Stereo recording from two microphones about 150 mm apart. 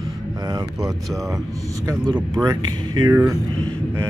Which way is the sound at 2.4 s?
20° right (ahead or behind).